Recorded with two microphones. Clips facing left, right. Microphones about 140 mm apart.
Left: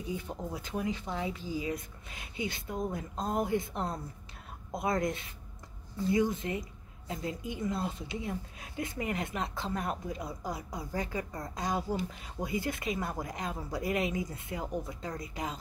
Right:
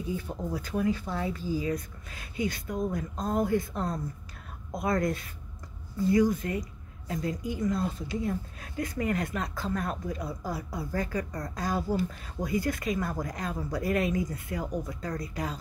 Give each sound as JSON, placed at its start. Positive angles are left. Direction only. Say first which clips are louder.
{"t": 0.5, "sound": "speech", "louder": "right 6 dB", "side_deg": 20}